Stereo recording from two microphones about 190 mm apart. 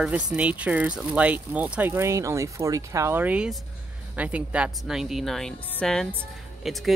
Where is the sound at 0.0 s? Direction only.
5° right (ahead or behind).